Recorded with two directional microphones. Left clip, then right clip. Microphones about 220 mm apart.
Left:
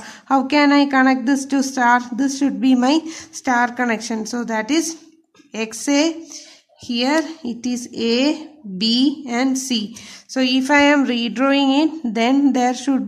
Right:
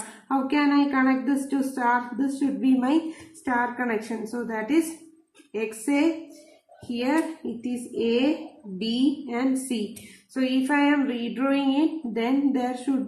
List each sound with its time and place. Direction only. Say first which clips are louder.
0.3 s speech: left 8 dB; 50° left (ahead or behind)